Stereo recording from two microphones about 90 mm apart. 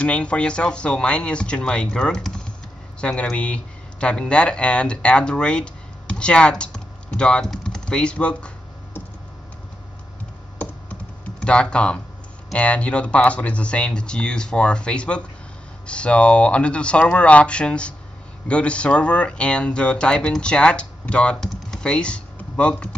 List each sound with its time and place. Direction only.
0.0 s speech: 15° left (ahead or behind)
10.6 s computer keyboard: 15° left (ahead or behind)
11.3 s speech: 10° left (ahead or behind)